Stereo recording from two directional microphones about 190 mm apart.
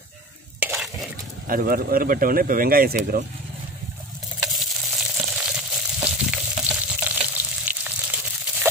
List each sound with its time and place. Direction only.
0.6 s stir: 10° right (ahead or behind)
1.5 s speech: 50° right (ahead or behind)
4.5 s frying: centre (ahead or behind)